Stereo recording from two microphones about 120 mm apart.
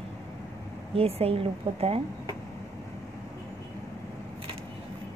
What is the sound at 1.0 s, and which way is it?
A woman's voice, 55° right (ahead or behind).